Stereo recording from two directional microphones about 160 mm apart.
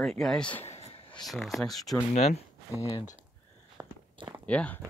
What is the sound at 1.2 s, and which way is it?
Speech, centre (ahead or behind).